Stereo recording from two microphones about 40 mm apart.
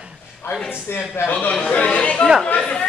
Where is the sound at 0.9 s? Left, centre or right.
Left.